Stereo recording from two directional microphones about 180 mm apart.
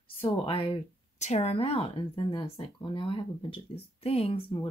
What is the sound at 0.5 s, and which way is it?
Speech, 30° left (ahead or behind).